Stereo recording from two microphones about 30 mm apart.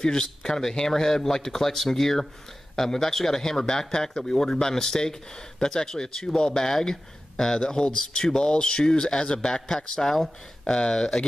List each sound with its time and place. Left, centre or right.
0.0 s speech: left